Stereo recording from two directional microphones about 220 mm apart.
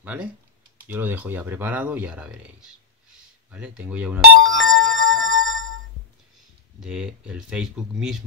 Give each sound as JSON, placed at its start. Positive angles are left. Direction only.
{"t": 0.0, "sound": "speech", "side_deg": -5}
{"t": 4.6, "sound": "music", "side_deg": 0}
{"t": 5.3, "sound": "a sound", "side_deg": -60}
{"t": 6.8, "sound": "speech", "side_deg": -5}